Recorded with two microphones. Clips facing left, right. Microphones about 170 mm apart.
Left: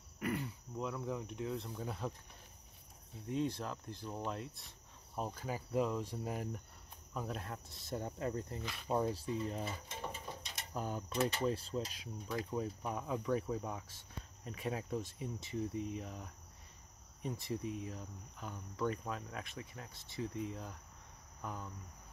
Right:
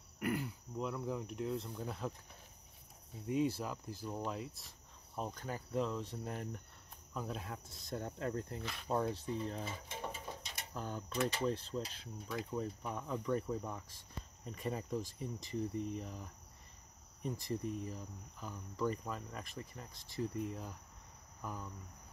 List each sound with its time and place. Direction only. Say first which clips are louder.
0.2 s speech: right 1 dB; centre (ahead or behind)
3.3 s speech: right 2 dB; 5° right (ahead or behind)
10.7 s speech: left 2 dB; 10° left (ahead or behind)
21.4 s cricket: even; centre (ahead or behind)